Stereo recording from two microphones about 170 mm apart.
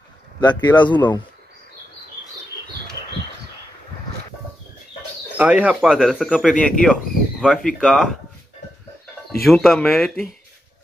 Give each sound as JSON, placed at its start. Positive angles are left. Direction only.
{"t": 0.4, "sound": "speech", "side_deg": 25}
{"t": 5.4, "sound": "speech", "side_deg": -10}
{"t": 9.4, "sound": "speech", "side_deg": 0}